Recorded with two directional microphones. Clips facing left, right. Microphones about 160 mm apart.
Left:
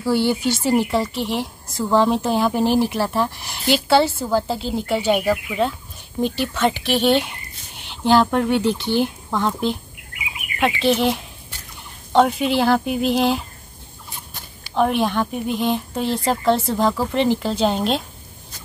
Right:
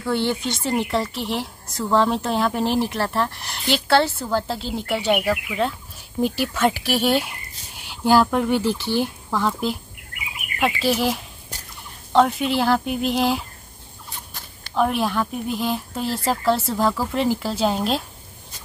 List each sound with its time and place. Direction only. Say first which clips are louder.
0.0 s speech: left 4 dB; 5° left (ahead or behind)
11.5 s fowl: right 5 dB; 40° right (ahead or behind)
12.1 s speech: left 1 dB; centre (ahead or behind)